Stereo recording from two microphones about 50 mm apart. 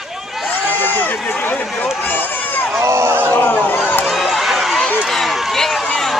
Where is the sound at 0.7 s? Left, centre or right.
Left.